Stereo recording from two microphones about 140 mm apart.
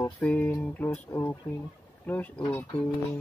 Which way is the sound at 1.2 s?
35° left (ahead or behind).